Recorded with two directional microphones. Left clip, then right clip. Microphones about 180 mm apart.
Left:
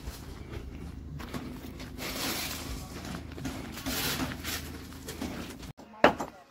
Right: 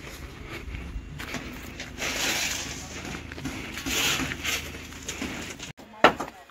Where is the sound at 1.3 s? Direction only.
65° left (ahead or behind).